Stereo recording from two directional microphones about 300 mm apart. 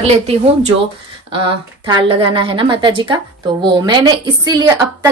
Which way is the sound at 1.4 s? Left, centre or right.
Centre.